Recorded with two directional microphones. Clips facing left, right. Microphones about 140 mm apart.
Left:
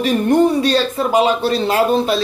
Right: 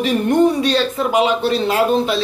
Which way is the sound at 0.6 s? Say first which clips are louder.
Left 1 dB; 40° left (ahead or behind).